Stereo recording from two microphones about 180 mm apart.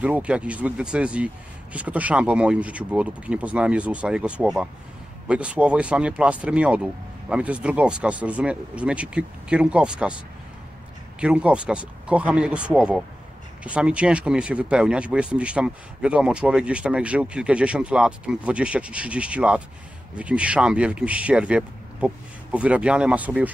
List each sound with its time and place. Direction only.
0.0 s speech: 5° right (ahead or behind)